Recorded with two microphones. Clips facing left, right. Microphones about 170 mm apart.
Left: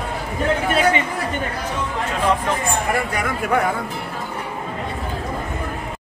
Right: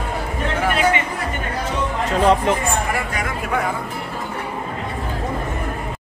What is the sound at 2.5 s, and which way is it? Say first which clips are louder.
Speech: right 4 dB; 20° right (ahead or behind).